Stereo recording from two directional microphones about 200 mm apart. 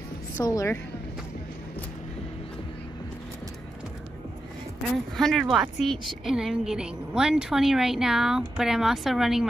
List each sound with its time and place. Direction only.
0.4 s a woman's voice: 15° left (ahead or behind)
4.9 s speech: centre (ahead or behind)